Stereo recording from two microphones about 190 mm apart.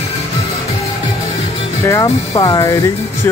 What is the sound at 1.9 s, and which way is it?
Speech, 20° left (ahead or behind).